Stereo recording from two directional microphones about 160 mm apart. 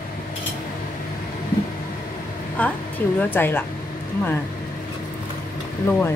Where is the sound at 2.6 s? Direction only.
10° left (ahead or behind).